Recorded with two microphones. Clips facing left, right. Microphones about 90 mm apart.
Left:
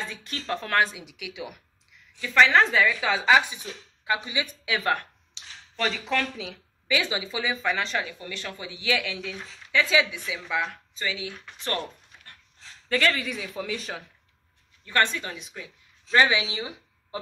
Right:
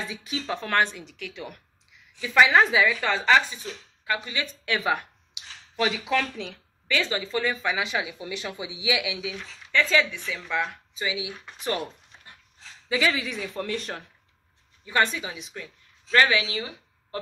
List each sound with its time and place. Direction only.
0.1 s speech: 5° right (ahead or behind); by 4.6 s 15° left (ahead or behind)
4.6 s speech: centre (ahead or behind)
9.4 s speech: 10° left (ahead or behind)
11.0 s speech: 15° right (ahead or behind); by 14.0 s centre (ahead or behind)
14.9 s speech: 10° right (ahead or behind)
16.1 s a woman's voice: 20° left (ahead or behind)